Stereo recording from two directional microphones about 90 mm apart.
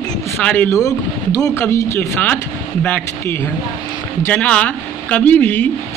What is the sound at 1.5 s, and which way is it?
Speech, 25° left (ahead or behind).